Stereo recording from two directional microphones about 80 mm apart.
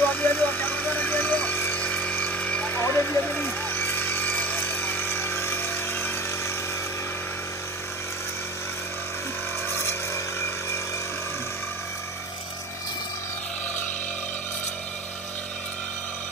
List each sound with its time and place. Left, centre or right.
0.0 s vehicle: left
2.8 s a sound: left
3.1 s vehicle: left
9.7 s vehicle: left